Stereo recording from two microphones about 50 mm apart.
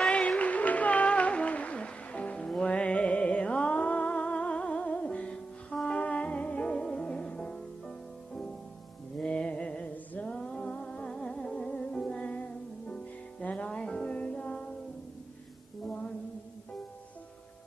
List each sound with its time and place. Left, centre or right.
0.0 s music: left
15.8 s music: left